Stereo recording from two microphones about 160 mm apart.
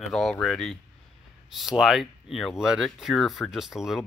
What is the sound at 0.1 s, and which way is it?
Speech, 5° left (ahead or behind).